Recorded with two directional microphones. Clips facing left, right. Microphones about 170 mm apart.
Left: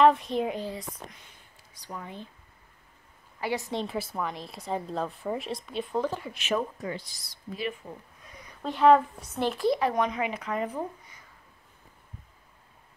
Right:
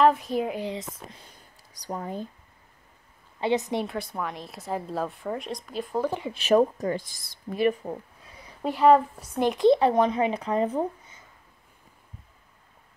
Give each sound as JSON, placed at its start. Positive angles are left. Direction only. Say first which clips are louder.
{"t": 0.0, "sound": "a woman's voice", "louder": "even", "side_deg": 0}
{"t": 0.7, "sound": "speech", "louder": "right 3 dB", "side_deg": -20}
{"t": 1.2, "sound": "a sound", "louder": "right 3 dB", "side_deg": -40}
{"t": 3.3, "sound": "speech", "louder": "right 5 dB", "side_deg": -20}
{"t": 3.8, "sound": "a woman's voice", "louder": "even", "side_deg": 0}
{"t": 6.0, "sound": "speech", "louder": "right 3 dB", "side_deg": -20}
{"t": 6.3, "sound": "speech", "louder": "right 9 dB", "side_deg": -40}
{"t": 8.6, "sound": "speech", "louder": "right 1 dB", "side_deg": -5}
{"t": 9.7, "sound": "speech", "louder": "right 7 dB", "side_deg": -30}